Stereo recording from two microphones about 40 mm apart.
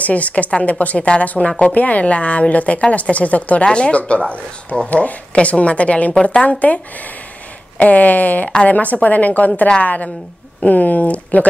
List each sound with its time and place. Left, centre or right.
0.0 s a woman's voice: left
3.6 s speech: left
4.8 s a woman's voice: left